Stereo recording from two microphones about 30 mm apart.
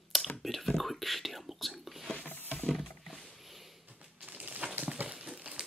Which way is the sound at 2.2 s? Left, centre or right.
Left.